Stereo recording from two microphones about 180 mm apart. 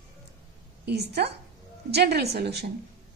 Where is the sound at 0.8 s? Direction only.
65° right (ahead or behind).